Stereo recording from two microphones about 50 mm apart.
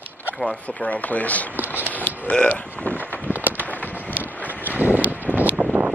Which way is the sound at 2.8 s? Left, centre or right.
Left.